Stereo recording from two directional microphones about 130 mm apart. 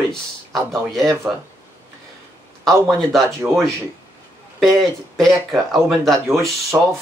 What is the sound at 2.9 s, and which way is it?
Speech, centre (ahead or behind).